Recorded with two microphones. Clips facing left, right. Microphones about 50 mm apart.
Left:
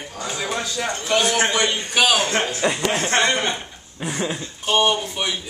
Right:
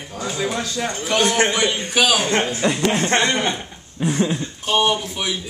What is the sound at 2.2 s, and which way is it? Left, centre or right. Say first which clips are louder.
Speech: right 2 dB; right.